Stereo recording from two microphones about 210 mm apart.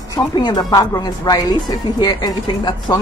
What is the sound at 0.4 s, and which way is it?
Speech, 20° left (ahead or behind).